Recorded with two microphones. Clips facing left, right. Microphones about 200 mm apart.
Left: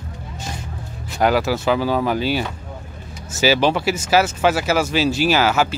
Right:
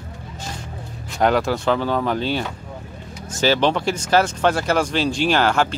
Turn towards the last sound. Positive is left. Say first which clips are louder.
# left 1 dB
turn(degrees=5)  # may be behind; listen again after turning